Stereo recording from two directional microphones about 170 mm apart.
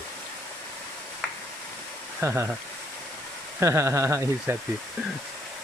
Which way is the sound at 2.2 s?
15° right (ahead or behind).